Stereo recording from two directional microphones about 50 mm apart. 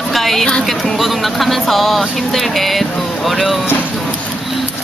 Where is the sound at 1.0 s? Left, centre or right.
Centre.